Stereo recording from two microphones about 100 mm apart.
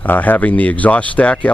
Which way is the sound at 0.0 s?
20° left (ahead or behind).